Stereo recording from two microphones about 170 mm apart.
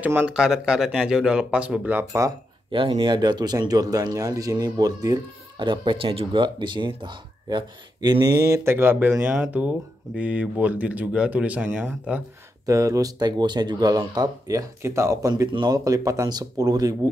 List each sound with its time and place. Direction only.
0.0 s speech: 10° right (ahead or behind)
2.7 s speech: 30° right (ahead or behind)